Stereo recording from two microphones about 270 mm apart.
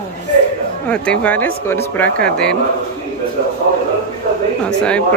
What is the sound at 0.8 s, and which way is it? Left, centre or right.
Speech, centre.